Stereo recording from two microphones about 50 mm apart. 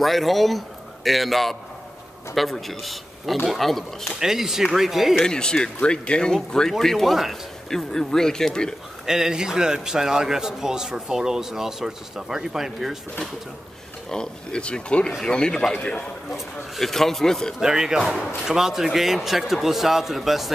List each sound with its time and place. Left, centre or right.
0.0 s a man's voice: centre
4.1 s a man's voice: centre
5.2 s speech: centre
7.7 s speech: centre
9.0 s a man's voice: centre
14.1 s speech: centre
16.3 s speech: centre
17.6 s speech: centre